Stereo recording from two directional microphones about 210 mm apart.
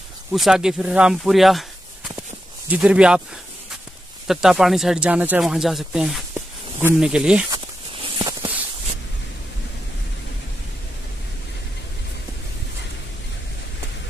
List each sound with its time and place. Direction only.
0.3 s speech: centre (ahead or behind)
4.3 s speech: centre (ahead or behind)
7.5 s walk: 25° right (ahead or behind)